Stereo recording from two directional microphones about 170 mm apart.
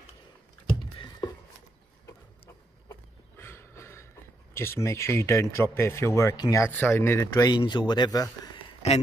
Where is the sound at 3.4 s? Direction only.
15° left (ahead or behind).